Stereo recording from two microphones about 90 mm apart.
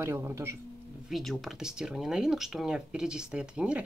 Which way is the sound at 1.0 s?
Centre (ahead or behind).